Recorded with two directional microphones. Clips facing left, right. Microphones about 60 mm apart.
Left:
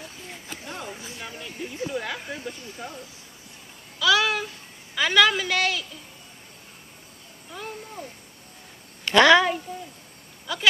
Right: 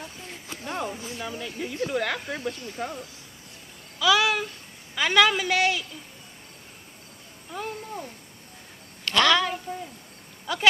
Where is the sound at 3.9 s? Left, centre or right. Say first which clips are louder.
Even; centre.